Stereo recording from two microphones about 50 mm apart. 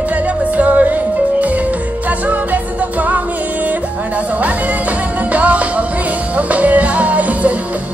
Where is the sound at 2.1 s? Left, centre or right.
Right.